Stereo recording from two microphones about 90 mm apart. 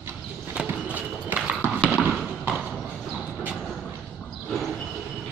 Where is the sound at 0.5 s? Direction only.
15° right (ahead or behind).